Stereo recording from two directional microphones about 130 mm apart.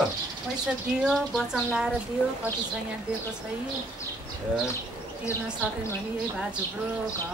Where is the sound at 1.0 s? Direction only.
Centre (ahead or behind).